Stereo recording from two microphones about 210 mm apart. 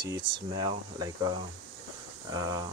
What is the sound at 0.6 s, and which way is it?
Speech, 20° right (ahead or behind).